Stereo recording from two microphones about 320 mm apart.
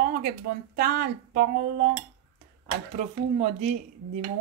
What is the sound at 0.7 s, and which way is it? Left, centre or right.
Speech, right.